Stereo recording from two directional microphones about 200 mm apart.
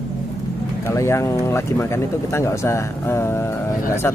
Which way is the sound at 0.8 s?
15° left (ahead or behind).